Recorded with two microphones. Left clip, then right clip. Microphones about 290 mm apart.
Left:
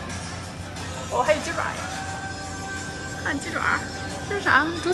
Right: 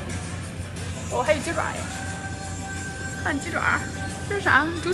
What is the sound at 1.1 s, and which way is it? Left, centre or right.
Speech, centre.